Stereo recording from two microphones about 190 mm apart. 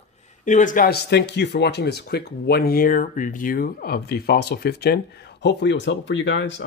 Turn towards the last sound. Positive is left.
turn(degrees=70)  # may be behind; listen again after turning